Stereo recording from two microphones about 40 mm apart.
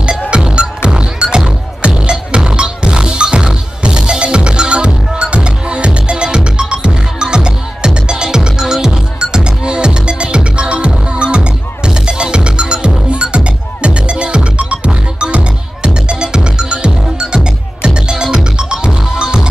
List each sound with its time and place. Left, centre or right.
0.6 s music: right